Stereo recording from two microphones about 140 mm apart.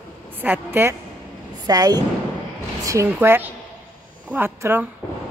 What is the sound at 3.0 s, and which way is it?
Speech, 15° right (ahead or behind).